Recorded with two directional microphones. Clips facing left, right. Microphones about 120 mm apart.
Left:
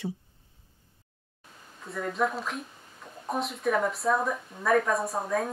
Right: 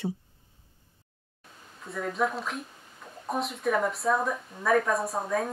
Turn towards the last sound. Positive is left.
turn(degrees=0)  # may be behind; listen again after turning